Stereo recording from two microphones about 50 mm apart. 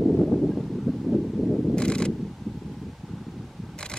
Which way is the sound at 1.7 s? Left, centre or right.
Centre.